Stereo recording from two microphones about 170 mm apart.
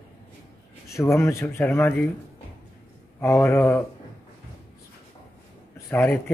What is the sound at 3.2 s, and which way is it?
Speech, 15° left (ahead or behind).